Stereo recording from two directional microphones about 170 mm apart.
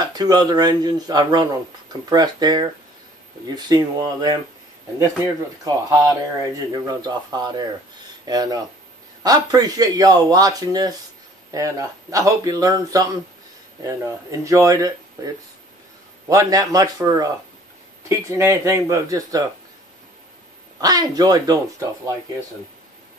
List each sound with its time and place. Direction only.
0.0 s speech: 25° right (ahead or behind)
16.3 s speech: 20° right (ahead or behind)
20.8 s speech: 25° right (ahead or behind)